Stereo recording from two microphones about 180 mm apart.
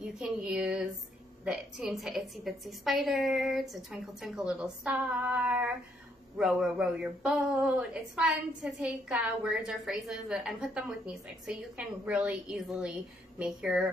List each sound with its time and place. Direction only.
0.0 s a woman's voice: 5° right (ahead or behind)